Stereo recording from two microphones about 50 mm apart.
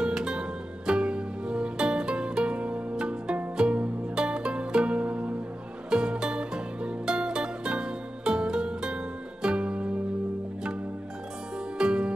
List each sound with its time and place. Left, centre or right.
0.0 s music: centre
11.8 s music: centre